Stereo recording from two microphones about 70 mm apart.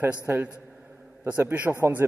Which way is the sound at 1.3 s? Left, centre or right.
Right.